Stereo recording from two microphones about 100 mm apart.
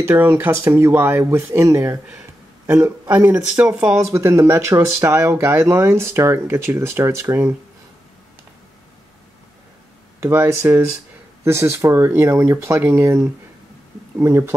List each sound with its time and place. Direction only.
0.0 s speech: 20° right (ahead or behind)
3.1 s speech: 15° right (ahead or behind)
4.0 s speech: 30° right (ahead or behind)
10.2 s speech: 25° right (ahead or behind)
14.1 s speech: 25° right (ahead or behind)